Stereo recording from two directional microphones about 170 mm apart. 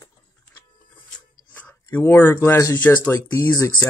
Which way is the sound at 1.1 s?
10° left (ahead or behind).